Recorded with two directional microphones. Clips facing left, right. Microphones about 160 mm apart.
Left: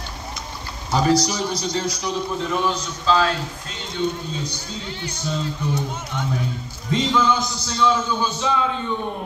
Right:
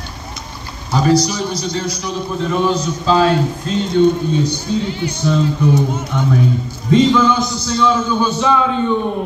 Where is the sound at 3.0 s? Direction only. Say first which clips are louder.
Right 6 dB; 20° right (ahead or behind).